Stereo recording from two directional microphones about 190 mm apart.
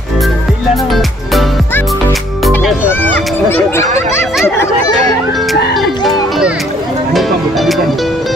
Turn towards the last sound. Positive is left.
turn(degrees=0)  # may be behind; listen again after turning